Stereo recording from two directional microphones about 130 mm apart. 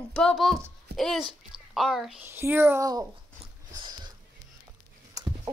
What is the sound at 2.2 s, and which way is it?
Speech, 15° right (ahead or behind).